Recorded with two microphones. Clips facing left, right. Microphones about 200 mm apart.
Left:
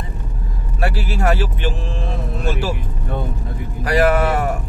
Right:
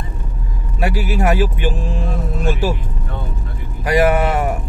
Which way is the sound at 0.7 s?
10° right (ahead or behind).